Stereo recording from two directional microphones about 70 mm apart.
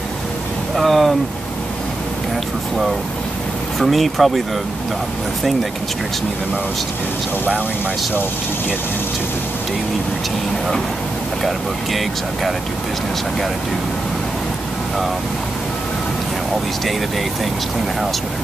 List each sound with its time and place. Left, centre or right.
0.7 s a sound: centre
3.8 s speech: centre
8.1 s speech: left
11.4 s speech: centre